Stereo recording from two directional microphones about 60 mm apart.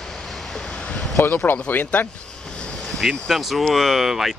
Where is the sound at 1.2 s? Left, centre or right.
Left.